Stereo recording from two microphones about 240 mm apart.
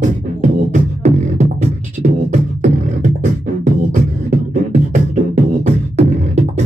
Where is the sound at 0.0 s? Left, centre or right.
Right.